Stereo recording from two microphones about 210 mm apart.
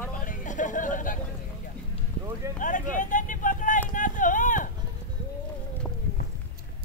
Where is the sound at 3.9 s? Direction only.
40° left (ahead or behind).